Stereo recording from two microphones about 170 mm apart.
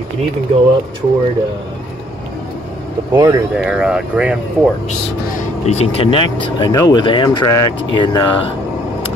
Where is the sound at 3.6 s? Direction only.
5° right (ahead or behind).